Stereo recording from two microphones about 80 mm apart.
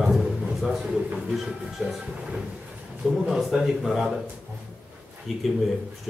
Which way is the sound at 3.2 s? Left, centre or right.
Centre.